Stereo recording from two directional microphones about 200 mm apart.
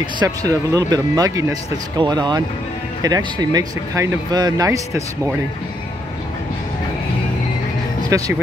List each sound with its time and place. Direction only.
0.0 s speech: 15° right (ahead or behind)
8.1 s speech: 15° right (ahead or behind)